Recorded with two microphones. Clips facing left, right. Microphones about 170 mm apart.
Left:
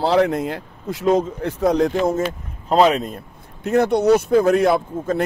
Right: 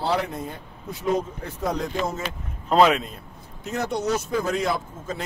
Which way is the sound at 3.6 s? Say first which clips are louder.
Left 10 dB; 60° left (ahead or behind).